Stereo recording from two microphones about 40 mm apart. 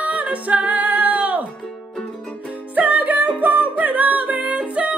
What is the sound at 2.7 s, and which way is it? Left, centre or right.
Music, right.